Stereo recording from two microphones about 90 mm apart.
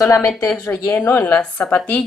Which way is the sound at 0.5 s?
30° left (ahead or behind).